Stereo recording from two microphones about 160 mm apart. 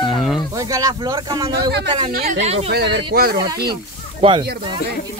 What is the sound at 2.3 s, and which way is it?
Speech, 40° right (ahead or behind).